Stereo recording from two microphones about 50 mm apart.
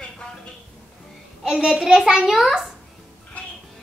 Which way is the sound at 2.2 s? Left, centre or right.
Centre.